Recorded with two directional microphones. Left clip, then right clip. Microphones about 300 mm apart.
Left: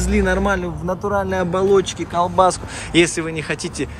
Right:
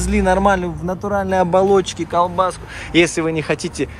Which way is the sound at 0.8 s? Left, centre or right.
Right.